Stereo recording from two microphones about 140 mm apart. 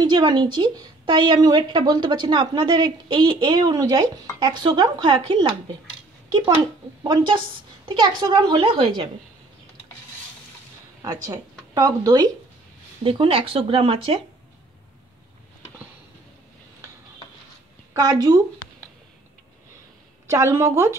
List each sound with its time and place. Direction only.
0.0 s a woman's voice: 30° right (ahead or behind)
7.0 s a woman's voice: 30° right (ahead or behind)
11.0 s speech: 20° right (ahead or behind)
13.0 s a woman's voice: 40° right (ahead or behind)
17.9 s a woman's voice: 30° right (ahead or behind)
20.2 s a woman's voice: 20° right (ahead or behind)